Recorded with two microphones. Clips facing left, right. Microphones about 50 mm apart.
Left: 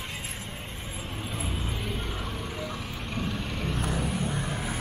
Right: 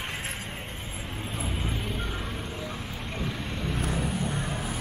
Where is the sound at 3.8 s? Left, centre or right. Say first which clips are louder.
Right 1 dB; centre.